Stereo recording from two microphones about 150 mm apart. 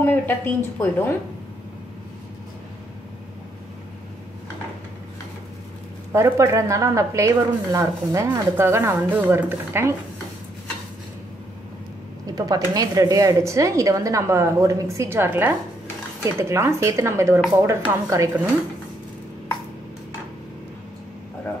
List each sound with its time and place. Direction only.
0.0 s speech: 15° left (ahead or behind)
6.1 s speech: 20° right (ahead or behind)
12.3 s speech: 25° right (ahead or behind)